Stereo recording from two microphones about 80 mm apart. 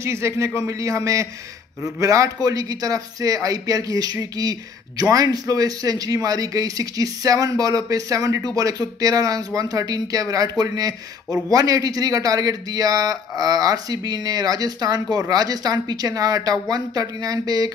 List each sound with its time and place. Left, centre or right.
0.0 s a man's voice: right